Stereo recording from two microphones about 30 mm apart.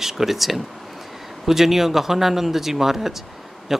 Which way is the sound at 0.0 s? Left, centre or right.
Centre.